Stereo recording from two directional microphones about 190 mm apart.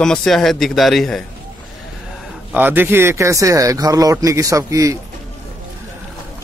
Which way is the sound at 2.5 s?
10° right (ahead or behind).